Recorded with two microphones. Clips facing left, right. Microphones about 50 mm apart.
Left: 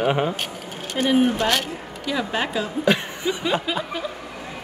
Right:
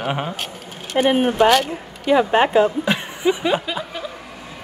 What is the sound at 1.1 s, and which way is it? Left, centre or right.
Speech, right.